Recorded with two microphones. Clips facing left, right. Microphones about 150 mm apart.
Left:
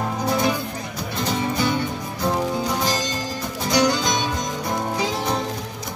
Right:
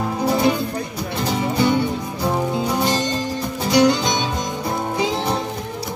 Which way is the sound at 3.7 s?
25° right (ahead or behind).